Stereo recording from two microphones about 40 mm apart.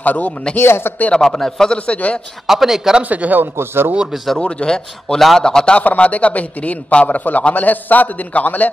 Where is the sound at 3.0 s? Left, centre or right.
Right.